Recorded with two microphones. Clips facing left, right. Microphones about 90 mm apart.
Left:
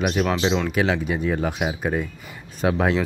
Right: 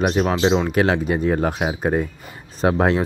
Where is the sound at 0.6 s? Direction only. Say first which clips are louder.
Right 3 dB; 45° right (ahead or behind).